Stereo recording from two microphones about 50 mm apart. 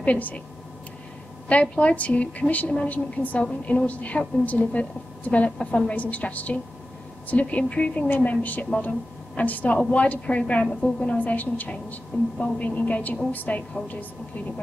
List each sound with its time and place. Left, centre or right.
0.0 s a woman's voice: left
1.5 s a woman's voice: left
11.1 s a woman's voice: left